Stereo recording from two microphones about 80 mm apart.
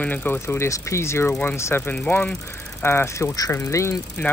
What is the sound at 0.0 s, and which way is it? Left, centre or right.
Speech, left.